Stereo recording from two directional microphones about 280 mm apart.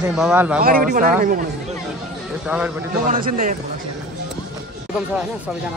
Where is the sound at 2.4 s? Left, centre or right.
Centre.